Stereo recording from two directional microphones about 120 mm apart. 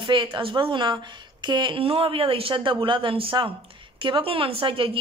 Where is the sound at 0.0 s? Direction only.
45° right (ahead or behind).